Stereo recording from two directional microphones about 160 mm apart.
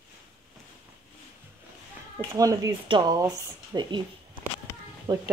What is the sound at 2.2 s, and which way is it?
Speech, 20° right (ahead or behind).